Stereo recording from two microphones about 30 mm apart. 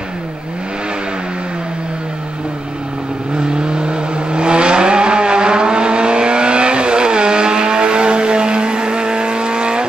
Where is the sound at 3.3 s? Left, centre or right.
Right.